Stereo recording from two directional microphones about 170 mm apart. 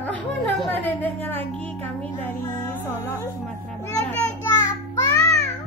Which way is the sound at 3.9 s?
20° left (ahead or behind).